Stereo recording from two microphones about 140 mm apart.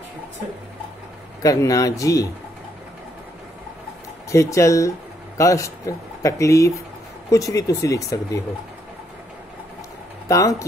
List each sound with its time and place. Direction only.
1.4 s speech: 25° left (ahead or behind)
4.3 s speech: 20° left (ahead or behind)
10.2 s speech: 25° left (ahead or behind)